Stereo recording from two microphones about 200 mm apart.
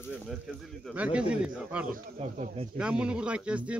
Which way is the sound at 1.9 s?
35° right (ahead or behind).